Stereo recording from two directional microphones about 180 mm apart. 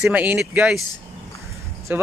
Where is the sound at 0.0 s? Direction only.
10° right (ahead or behind).